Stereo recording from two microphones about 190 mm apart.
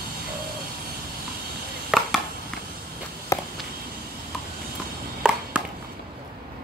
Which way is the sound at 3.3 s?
15° left (ahead or behind).